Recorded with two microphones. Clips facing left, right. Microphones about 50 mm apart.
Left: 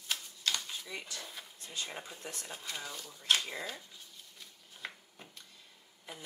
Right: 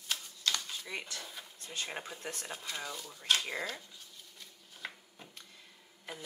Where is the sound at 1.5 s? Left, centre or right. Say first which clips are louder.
Right 1 dB; right.